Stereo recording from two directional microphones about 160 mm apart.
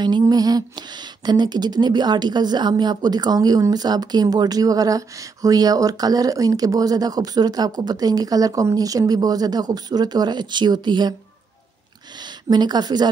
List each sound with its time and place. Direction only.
0.0 s speech: 25° right (ahead or behind)
12.2 s speech: 25° right (ahead or behind)